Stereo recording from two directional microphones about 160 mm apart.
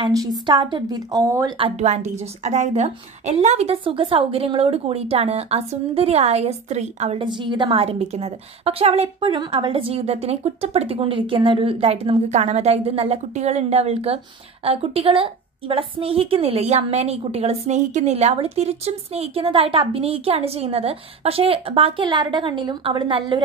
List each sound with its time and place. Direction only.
0.0 s a woman's voice: 25° right (ahead or behind)
1.6 s a woman's voice: 45° right (ahead or behind)